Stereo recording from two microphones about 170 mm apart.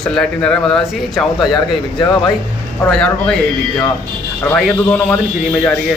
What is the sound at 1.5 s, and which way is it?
Speech, 20° left (ahead or behind).